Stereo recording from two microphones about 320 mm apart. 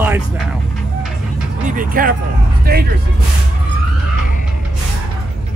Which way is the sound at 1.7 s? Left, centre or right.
Right.